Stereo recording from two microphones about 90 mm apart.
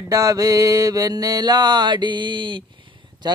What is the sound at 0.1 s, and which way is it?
Speech, 40° right (ahead or behind).